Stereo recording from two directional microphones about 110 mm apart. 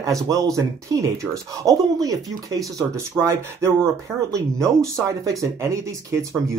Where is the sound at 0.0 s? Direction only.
30° right (ahead or behind).